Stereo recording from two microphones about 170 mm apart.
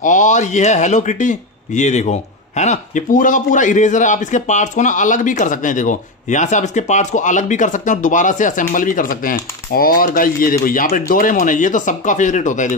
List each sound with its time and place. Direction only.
0.0 s speech: 50° left (ahead or behind)